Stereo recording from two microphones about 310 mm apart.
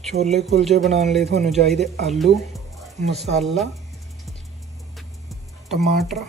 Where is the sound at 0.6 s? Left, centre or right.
Centre.